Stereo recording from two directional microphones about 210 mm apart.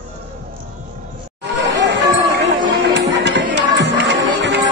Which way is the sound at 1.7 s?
60° right (ahead or behind).